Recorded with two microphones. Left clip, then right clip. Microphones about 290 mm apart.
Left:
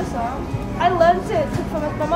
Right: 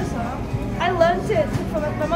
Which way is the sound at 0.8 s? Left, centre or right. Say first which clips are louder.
Left 3 dB; centre.